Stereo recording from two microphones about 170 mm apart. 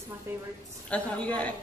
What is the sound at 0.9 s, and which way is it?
Speech, 5° left (ahead or behind).